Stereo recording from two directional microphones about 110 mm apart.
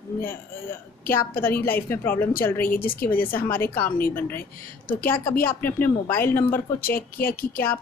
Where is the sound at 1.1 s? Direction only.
20° left (ahead or behind).